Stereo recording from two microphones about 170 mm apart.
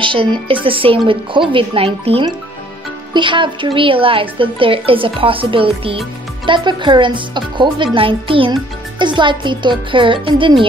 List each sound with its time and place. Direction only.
0.0 s a woman's voice: 30° right (ahead or behind)